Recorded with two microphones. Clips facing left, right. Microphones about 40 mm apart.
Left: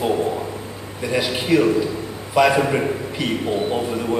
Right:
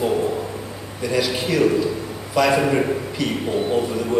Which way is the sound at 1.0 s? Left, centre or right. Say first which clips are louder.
Even; left.